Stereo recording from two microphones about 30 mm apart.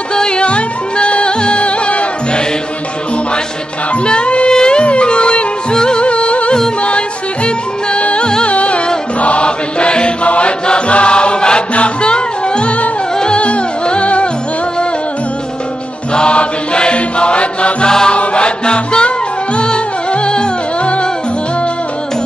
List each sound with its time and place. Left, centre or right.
0.1 s music: left
3.9 s music: left
4.5 s music: left
6.0 s music: left
10.2 s chant: left
11.7 s music: left
16.1 s chant: left
17.8 s music: left
18.1 s music: left